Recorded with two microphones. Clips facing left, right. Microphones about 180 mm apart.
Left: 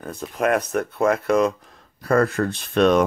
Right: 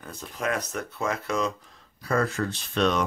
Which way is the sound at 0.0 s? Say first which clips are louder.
Left 8 dB; 55° left (ahead or behind).